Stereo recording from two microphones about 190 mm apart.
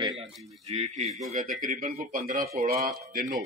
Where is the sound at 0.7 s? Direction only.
35° right (ahead or behind).